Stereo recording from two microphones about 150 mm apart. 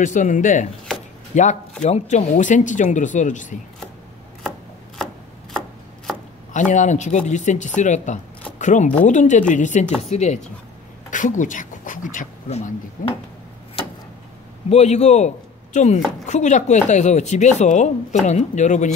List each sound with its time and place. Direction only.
0.0 s speech: 55° left (ahead or behind)
4.4 s chopping: centre (ahead or behind)
6.5 s speech: 55° left (ahead or behind)
11.1 s a sound: 60° left (ahead or behind)
14.7 s a man's voice: 50° left (ahead or behind)